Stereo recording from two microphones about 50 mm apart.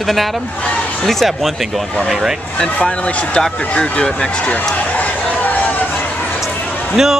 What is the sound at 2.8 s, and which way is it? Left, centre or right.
Speech, left.